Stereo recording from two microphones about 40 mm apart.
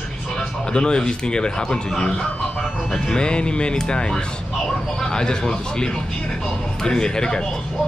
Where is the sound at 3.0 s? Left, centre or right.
Centre.